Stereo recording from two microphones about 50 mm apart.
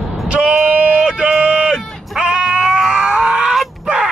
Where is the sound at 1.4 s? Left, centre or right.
Centre.